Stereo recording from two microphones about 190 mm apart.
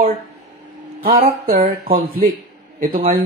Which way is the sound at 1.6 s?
45° right (ahead or behind).